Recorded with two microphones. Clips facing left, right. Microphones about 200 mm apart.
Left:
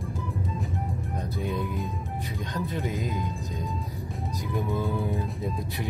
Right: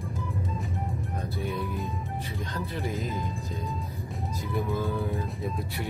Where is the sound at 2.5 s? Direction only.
15° left (ahead or behind).